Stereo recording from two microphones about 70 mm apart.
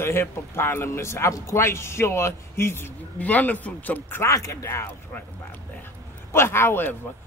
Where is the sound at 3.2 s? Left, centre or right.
Left.